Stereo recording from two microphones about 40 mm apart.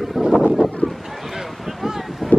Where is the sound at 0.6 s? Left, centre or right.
Right.